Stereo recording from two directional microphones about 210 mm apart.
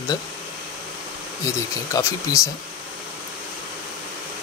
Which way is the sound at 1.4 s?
15° left (ahead or behind).